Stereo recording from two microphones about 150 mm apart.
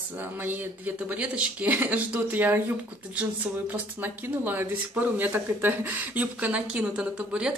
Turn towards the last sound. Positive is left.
turn(degrees=-5)  # may be behind; listen again after turning